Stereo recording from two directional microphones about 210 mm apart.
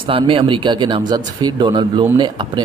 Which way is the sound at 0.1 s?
25° right (ahead or behind).